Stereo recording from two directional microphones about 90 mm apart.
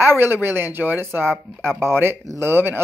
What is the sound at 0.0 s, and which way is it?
Speech, 25° right (ahead or behind).